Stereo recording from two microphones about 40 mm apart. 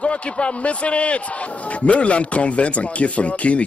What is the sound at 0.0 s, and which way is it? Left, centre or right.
A man's voice, left.